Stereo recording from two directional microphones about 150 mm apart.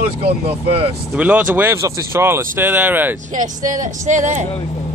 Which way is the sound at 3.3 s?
55° right (ahead or behind).